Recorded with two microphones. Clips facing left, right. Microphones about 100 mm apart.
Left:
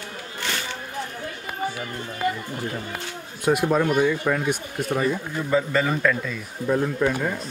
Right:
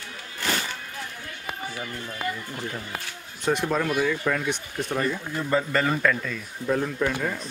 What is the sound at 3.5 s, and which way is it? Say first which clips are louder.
Speech: left 4 dB; 10° left (ahead or behind).